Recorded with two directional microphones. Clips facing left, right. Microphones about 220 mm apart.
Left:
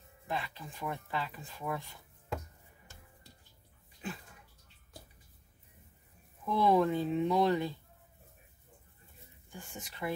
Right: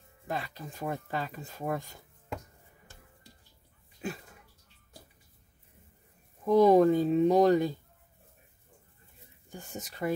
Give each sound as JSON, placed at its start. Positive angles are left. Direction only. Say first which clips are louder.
{"t": 0.3, "sound": "speech", "louder": "right 2 dB", "side_deg": -40}
{"t": 6.4, "sound": "speech", "louder": "right 7 dB", "side_deg": -40}
{"t": 9.5, "sound": "speech", "louder": "right 5 dB", "side_deg": -40}